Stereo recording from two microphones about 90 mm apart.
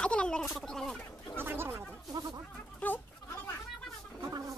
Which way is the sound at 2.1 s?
50° right (ahead or behind).